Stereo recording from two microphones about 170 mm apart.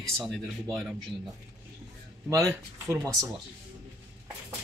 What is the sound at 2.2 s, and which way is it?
Speech, 15° right (ahead or behind).